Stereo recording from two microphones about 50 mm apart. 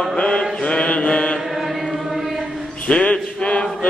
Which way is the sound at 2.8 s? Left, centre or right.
Left.